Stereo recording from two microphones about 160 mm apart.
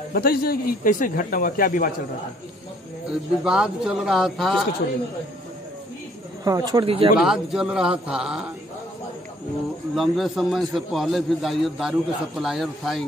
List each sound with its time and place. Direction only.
0.1 s a man's voice: 70° left (ahead or behind)
3.1 s a man's voice: 5° right (ahead or behind)
6.4 s speech: 25° right (ahead or behind)
7.2 s a man's voice: 5° right (ahead or behind)
9.9 s a man's voice: centre (ahead or behind)